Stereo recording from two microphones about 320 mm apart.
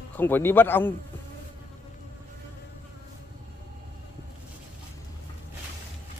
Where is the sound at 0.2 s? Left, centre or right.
Centre.